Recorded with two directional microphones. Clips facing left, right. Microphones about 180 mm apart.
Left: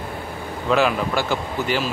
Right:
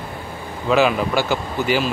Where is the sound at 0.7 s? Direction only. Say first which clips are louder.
Right 2 dB; centre (ahead or behind).